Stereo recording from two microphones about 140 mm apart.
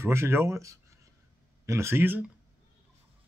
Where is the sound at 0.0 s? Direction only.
20° right (ahead or behind).